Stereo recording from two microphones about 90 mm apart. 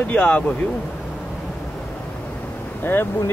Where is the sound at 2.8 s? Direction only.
20° left (ahead or behind).